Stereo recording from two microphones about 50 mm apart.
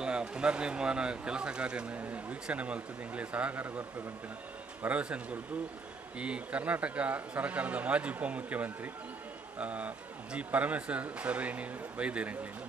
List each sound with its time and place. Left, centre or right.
0.0 s speech: centre
2.0 s speech: right
4.8 s speech: right